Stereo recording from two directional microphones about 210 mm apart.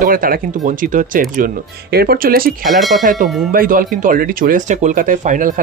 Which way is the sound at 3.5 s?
40° right (ahead or behind).